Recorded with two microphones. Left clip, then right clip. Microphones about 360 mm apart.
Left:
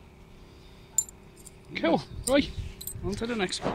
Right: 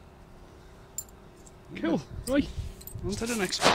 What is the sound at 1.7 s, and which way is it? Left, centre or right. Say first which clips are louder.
Speech: left 4 dB; centre.